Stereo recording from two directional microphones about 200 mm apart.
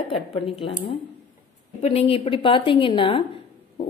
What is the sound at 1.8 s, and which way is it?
A woman's voice, 30° left (ahead or behind).